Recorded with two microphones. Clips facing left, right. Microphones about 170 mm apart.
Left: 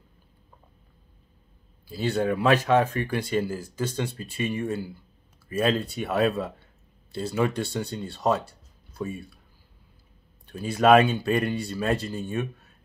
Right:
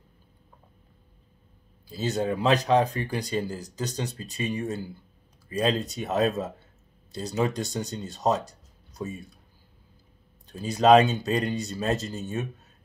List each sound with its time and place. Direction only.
2.1 s speech: 20° right (ahead or behind)
10.5 s speech: 25° right (ahead or behind)